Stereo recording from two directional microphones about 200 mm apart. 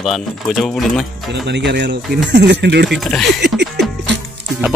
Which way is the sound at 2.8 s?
Centre (ahead or behind).